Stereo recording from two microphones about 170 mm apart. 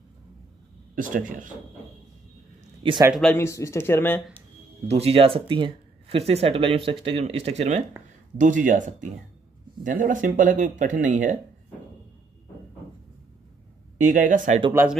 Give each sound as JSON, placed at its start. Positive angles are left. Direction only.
{"t": 0.9, "sound": "speech", "side_deg": -50}
{"t": 2.8, "sound": "a man's voice", "side_deg": -30}
{"t": 3.3, "sound": "speech", "side_deg": 15}
{"t": 4.8, "sound": "speech", "side_deg": -35}
{"t": 13.9, "sound": "speech", "side_deg": -50}